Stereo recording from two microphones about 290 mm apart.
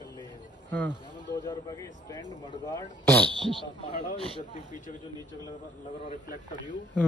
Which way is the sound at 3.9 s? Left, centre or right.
Centre.